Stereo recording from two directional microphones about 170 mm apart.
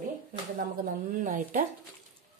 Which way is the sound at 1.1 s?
50° right (ahead or behind).